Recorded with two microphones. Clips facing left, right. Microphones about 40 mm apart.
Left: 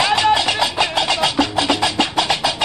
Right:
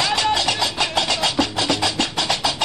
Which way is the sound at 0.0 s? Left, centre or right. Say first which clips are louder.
Left 4 dB; centre.